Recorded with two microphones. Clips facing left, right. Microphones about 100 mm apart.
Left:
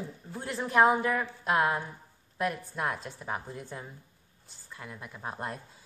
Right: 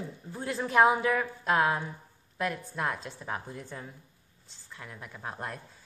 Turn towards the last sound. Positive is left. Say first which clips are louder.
# left 1 dB
turn(degrees=15)  # may be behind; listen again after turning